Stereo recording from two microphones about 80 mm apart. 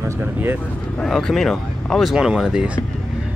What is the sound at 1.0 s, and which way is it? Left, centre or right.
Speech, centre.